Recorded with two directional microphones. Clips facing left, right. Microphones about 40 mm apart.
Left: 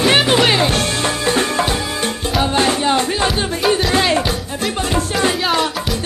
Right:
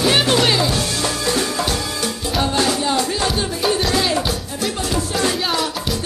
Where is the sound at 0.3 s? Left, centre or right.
Left.